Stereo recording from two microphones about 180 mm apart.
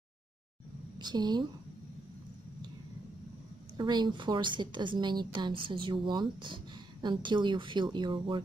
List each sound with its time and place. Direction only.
0.9 s a woman's voice: 25° right (ahead or behind)
3.7 s a woman's voice: 25° right (ahead or behind)